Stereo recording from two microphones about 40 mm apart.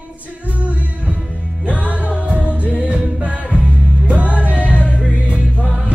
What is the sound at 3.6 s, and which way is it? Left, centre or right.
Music, left.